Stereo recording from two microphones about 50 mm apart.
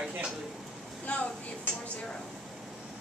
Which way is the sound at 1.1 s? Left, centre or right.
Left.